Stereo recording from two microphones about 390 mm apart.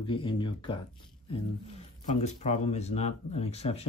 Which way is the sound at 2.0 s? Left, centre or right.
Centre.